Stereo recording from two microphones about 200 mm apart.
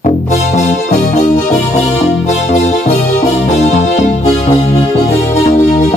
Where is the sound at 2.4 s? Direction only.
35° left (ahead or behind).